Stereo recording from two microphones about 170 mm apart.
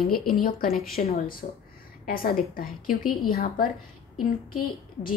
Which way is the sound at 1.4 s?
45° left (ahead or behind).